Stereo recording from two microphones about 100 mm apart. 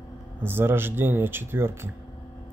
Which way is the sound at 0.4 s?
20° right (ahead or behind).